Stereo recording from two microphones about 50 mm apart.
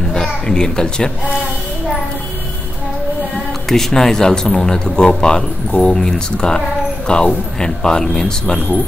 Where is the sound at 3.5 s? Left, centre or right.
Centre.